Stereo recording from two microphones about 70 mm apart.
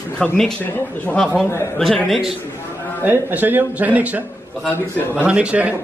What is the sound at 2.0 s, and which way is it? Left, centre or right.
Speech, centre.